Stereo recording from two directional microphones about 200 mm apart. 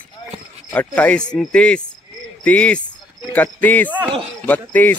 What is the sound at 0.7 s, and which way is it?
Speech, 5° left (ahead or behind).